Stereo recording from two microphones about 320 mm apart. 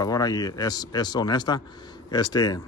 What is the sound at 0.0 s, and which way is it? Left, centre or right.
Speech, centre.